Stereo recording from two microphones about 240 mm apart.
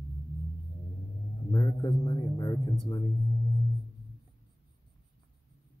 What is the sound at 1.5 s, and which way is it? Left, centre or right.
Speech, centre.